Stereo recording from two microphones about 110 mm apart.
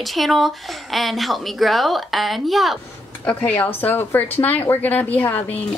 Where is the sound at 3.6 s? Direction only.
15° left (ahead or behind).